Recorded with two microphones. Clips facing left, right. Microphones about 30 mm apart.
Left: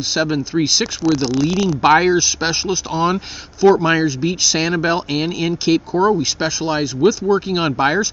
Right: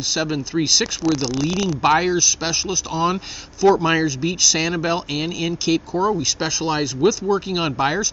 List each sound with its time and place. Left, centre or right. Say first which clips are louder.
0.1 s speech: left 4 dB; centre
1.8 s speech: left 4 dB; centre
6.1 s speech: left 3 dB; centre